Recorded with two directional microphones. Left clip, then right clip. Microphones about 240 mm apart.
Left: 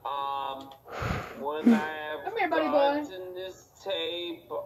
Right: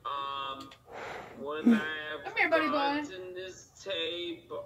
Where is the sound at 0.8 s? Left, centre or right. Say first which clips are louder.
Left 8 dB; left.